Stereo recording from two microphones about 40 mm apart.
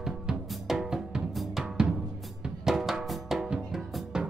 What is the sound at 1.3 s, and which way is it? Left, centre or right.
Drum, centre.